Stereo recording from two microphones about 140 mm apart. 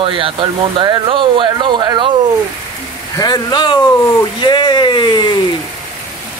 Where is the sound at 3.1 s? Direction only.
30° left (ahead or behind).